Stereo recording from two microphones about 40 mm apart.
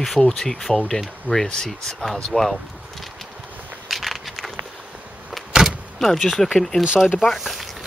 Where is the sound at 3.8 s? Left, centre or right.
Centre.